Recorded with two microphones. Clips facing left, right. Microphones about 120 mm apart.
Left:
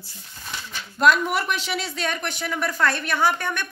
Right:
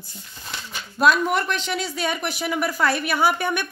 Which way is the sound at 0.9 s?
Centre (ahead or behind).